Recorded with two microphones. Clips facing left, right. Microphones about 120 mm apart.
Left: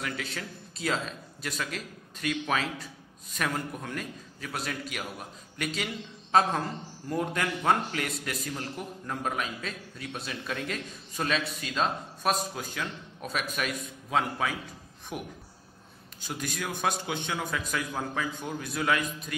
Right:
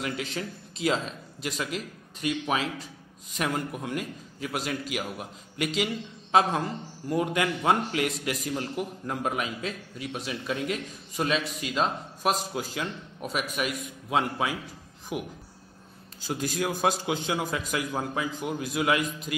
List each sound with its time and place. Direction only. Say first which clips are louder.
0.0 s a man's voice: right 4 dB; 25° right (ahead or behind)
6.3 s a man's voice: right 1 dB; 10° right (ahead or behind)
16.5 s a man's voice: right 4 dB; 25° right (ahead or behind)